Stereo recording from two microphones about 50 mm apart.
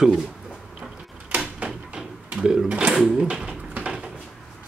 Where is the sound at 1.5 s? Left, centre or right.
Centre.